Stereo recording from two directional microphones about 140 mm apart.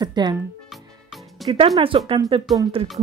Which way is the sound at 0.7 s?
Centre (ahead or behind).